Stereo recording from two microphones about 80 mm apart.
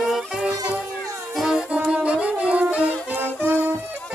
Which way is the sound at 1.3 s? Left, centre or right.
Centre.